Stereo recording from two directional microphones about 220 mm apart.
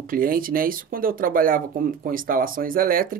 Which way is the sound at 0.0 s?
40° right (ahead or behind).